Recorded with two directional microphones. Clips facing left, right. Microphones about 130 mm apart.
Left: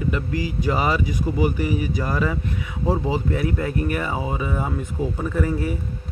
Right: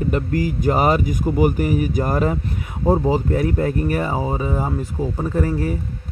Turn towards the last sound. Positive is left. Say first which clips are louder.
# right 2 dB
turn(degrees=-40)  # may be behind; listen again after turning